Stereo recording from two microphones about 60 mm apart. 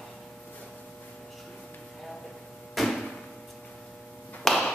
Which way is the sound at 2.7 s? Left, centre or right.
Centre.